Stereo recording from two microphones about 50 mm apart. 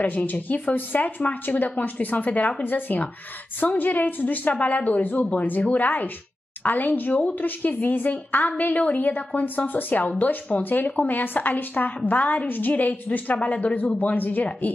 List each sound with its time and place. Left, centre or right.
0.0 s a woman's voice: left